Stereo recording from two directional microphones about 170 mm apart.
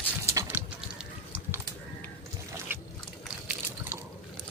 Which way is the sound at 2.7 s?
10° right (ahead or behind).